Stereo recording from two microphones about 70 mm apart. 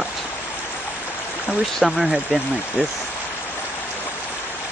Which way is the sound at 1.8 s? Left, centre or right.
Centre.